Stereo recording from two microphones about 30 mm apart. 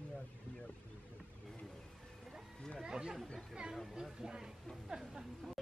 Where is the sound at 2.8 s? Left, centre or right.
Right.